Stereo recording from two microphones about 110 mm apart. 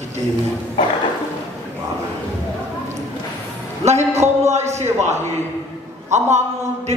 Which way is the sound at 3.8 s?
90° right.